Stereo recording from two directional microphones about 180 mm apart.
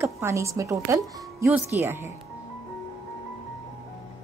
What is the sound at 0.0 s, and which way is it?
A woman's voice, 15° right (ahead or behind).